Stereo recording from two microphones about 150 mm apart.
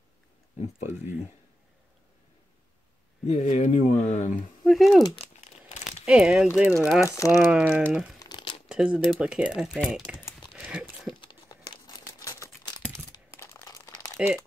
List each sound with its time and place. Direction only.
3.3 s speech: 50° left (ahead or behind)
4.6 s speech: centre (ahead or behind)
6.0 s speech: 5° right (ahead or behind)
7.1 s speech: 20° left (ahead or behind)
7.3 s speech: 10° right (ahead or behind)
8.2 s crumpling: 30° left (ahead or behind)
8.6 s speech: 5° right (ahead or behind)
10.1 s typing: 5° right (ahead or behind)
10.6 s horse: 5° right (ahead or behind)
11.1 s crumpling: 30° left (ahead or behind)
14.1 s speech: 5° right (ahead or behind)